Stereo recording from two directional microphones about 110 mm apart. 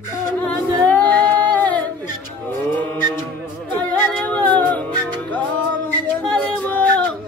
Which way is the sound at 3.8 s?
15° left (ahead or behind).